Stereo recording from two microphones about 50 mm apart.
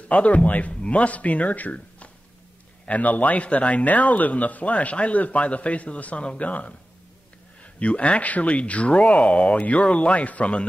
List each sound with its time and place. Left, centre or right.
0.1 s speech: left